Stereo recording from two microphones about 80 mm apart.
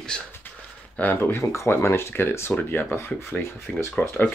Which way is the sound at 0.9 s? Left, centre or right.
Left.